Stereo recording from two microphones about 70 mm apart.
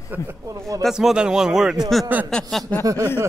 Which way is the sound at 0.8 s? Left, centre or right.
Centre.